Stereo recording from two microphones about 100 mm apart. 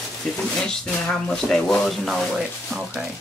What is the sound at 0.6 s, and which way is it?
Speech, 5° left (ahead or behind).